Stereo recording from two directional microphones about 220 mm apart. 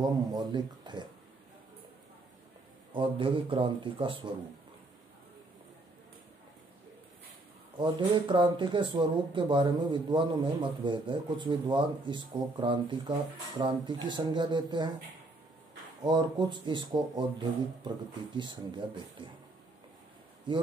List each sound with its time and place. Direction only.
0.0 s speech: 20° right (ahead or behind)
2.9 s speech: 20° right (ahead or behind)
7.7 s speech: 20° right (ahead or behind)
16.0 s speech: 20° right (ahead or behind)